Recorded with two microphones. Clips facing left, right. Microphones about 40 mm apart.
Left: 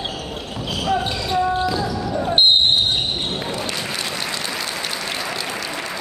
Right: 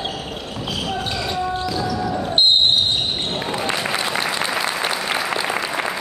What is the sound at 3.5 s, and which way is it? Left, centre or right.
Applause, right.